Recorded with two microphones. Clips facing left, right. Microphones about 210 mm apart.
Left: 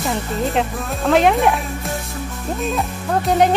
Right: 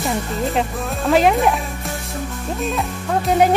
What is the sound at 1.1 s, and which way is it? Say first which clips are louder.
Speech: even; centre (ahead or behind).